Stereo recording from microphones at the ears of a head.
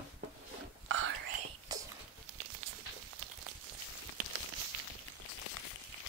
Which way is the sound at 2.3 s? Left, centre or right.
Right.